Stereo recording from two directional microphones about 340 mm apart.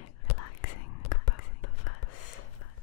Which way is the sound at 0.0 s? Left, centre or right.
Left.